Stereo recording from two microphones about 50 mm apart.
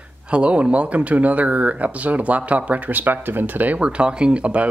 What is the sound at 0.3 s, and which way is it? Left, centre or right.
Speech, right.